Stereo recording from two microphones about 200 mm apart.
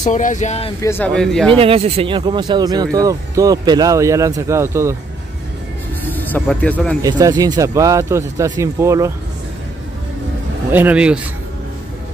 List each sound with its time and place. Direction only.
0.0 s speech: 40° left (ahead or behind)
0.8 s speech: 10° left (ahead or behind)
1.5 s speech: 30° right (ahead or behind)
6.1 s speech: 10° left (ahead or behind)
7.0 s speech: 20° right (ahead or behind)
10.7 s speech: 10° right (ahead or behind)